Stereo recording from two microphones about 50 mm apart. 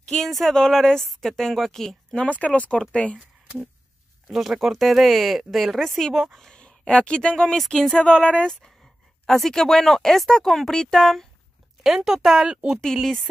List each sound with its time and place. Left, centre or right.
0.0 s speech: centre
2.1 s speech: left
4.3 s speech: centre
6.6 s speech: left
7.9 s speech: left
9.3 s speech: centre
11.8 s speech: centre